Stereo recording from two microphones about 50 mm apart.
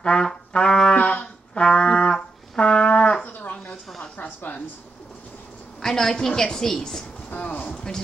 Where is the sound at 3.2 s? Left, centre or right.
Left.